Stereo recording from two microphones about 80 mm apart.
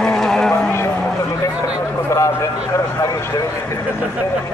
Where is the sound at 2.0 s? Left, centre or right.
Left.